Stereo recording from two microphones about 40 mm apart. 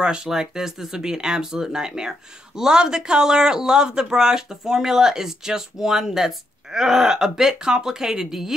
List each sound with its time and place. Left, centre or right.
0.0 s speech: right
0.3 s speech: centre